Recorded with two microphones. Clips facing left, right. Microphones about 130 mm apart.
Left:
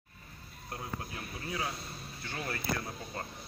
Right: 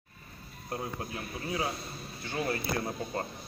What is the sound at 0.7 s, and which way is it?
Speech, 25° right (ahead or behind).